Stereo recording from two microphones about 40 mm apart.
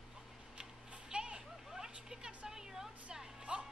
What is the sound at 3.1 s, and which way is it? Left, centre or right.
Music, centre.